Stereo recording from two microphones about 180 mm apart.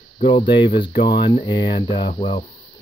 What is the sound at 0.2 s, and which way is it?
Speech, 30° left (ahead or behind).